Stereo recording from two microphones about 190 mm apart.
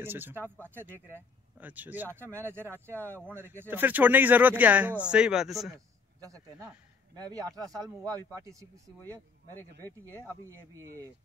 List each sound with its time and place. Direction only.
0.0 s speech: 10° right (ahead or behind)
6.2 s speech: 15° right (ahead or behind)
9.0 s speech: 10° left (ahead or behind)